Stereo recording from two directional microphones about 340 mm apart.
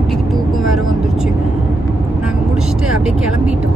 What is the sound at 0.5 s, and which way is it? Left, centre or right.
Vehicle, centre.